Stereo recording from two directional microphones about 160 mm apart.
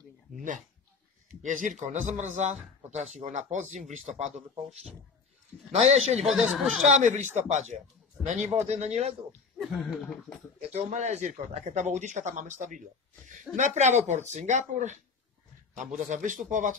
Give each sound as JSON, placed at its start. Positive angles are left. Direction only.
{"t": 1.4, "sound": "speech", "side_deg": -55}
{"t": 4.3, "sound": "speech", "side_deg": 0}
{"t": 5.7, "sound": "speech", "side_deg": -45}
{"t": 6.2, "sound": "speech", "side_deg": 0}
{"t": 6.9, "sound": "speech", "side_deg": -50}
{"t": 9.6, "sound": "speech", "side_deg": 0}
{"t": 10.7, "sound": "speech", "side_deg": -45}